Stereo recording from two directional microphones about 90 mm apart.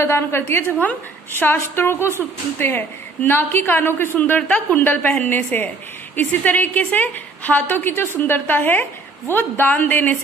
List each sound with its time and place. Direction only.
0.0 s a woman's voice: 25° left (ahead or behind)